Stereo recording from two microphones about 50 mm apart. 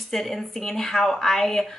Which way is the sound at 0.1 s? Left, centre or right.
Centre.